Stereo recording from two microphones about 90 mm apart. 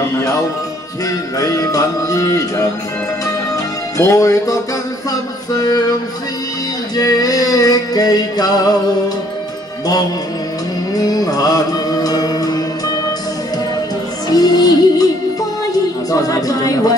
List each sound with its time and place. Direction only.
0.1 s music: 40° left (ahead or behind)
4.0 s music: 35° left (ahead or behind)
5.5 s a sound: 45° left (ahead or behind)
7.0 s music: 45° left (ahead or behind)
11.0 s music: 45° left (ahead or behind)
14.3 s music: 45° left (ahead or behind)
16.1 s speech: 40° left (ahead or behind)